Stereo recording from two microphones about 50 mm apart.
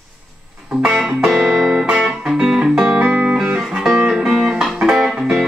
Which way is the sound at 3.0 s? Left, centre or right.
Right.